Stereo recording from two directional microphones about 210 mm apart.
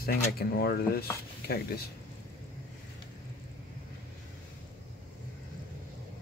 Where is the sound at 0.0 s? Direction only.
45° left (ahead or behind).